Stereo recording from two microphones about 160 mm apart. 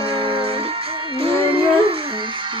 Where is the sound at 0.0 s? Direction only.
35° right (ahead or behind).